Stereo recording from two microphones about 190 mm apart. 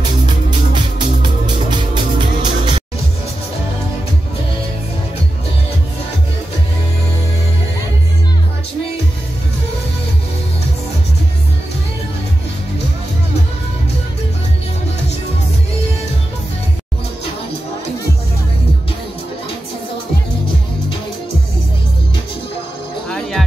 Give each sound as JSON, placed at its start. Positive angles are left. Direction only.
{"t": 0.0, "sound": "music", "side_deg": -25}
{"t": 23.0, "sound": "music", "side_deg": 5}